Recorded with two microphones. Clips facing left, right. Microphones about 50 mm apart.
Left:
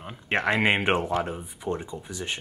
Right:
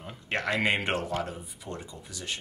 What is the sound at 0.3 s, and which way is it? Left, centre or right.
Speech, left.